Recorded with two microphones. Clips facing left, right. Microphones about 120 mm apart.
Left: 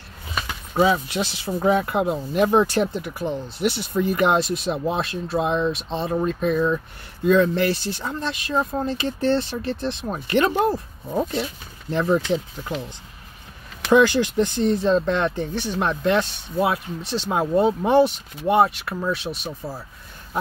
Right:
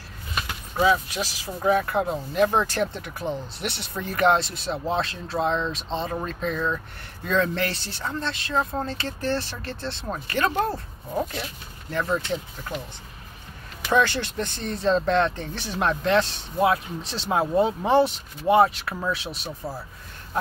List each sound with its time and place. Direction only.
0.7 s speech: 25° left (ahead or behind)
3.0 s speech: centre (ahead or behind)
4.1 s speech: 15° left (ahead or behind)
13.9 s speech: 15° left (ahead or behind)
14.8 s speech: 5° left (ahead or behind)